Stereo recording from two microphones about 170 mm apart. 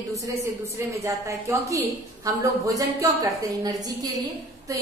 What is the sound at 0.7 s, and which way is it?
A woman's voice, 15° right (ahead or behind).